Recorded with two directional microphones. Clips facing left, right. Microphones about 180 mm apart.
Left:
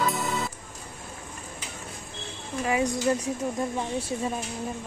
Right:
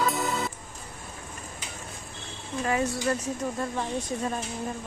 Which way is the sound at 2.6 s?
10° left (ahead or behind).